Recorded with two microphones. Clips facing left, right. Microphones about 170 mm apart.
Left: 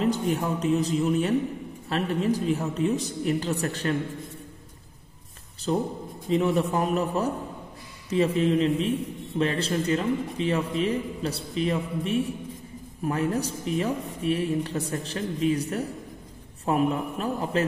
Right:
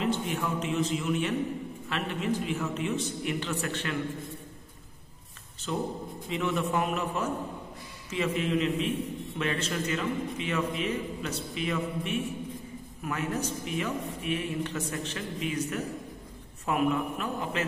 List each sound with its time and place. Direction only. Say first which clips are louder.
0.0 s a man's voice: left 5 dB; 40° left (ahead or behind)
5.7 s a man's voice: left 5 dB; 35° left (ahead or behind)